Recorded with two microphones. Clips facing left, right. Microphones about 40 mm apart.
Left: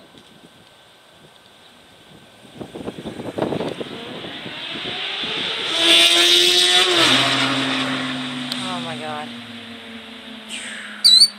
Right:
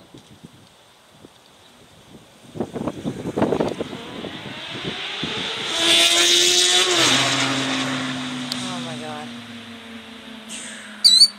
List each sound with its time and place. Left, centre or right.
2.5 s vehicle: centre